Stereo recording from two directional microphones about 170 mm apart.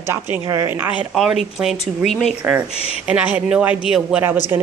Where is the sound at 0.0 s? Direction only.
15° right (ahead or behind).